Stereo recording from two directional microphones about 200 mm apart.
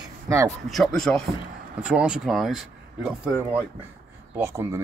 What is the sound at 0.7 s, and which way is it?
Speech, centre (ahead or behind).